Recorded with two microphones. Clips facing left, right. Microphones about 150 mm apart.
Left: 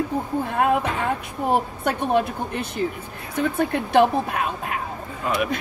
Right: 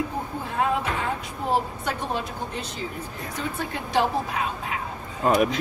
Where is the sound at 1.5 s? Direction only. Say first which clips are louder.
Left 3 dB; 60° left (ahead or behind).